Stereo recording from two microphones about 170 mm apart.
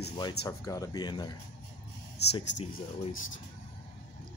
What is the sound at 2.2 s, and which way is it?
Speech, 80° left.